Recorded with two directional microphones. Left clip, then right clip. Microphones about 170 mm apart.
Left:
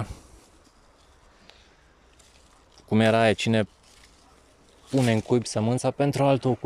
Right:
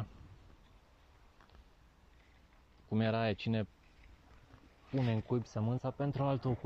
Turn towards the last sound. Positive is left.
turn(degrees=55)  # may be behind; listen again after turning